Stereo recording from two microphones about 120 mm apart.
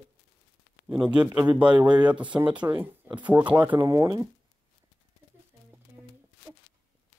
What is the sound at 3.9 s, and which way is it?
Speech, 30° right (ahead or behind).